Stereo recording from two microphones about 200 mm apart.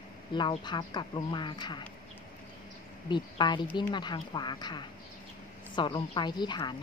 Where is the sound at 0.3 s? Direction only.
25° left (ahead or behind).